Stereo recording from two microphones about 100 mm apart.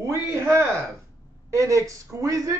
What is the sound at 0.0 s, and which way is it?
Speech, 25° right (ahead or behind).